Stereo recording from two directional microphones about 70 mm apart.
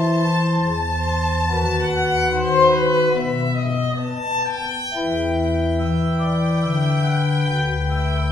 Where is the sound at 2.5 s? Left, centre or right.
Left.